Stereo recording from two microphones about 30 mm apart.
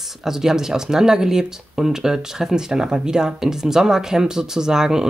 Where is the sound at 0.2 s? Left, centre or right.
Centre.